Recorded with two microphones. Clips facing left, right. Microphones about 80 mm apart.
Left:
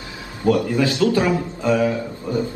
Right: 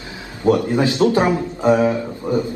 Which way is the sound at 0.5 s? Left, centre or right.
Right.